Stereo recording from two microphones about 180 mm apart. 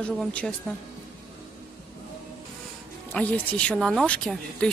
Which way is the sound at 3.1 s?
10° left (ahead or behind).